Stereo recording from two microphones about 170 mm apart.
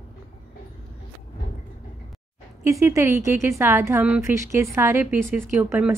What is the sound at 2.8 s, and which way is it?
A woman's voice, 15° right (ahead or behind).